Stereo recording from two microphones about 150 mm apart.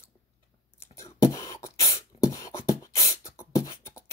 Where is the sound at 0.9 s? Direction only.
20° left (ahead or behind).